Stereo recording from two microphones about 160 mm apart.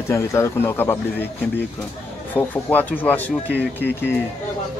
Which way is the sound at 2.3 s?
10° left (ahead or behind).